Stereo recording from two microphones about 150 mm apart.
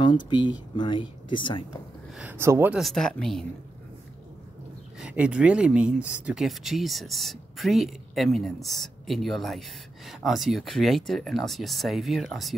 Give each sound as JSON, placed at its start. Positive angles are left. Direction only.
{"t": 0.0, "sound": "speech", "side_deg": 30}
{"t": 2.1, "sound": "speech", "side_deg": -15}
{"t": 2.8, "sound": "speech", "side_deg": 0}
{"t": 5.0, "sound": "speech", "side_deg": -5}